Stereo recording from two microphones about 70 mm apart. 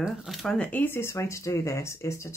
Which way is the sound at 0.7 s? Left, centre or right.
Left.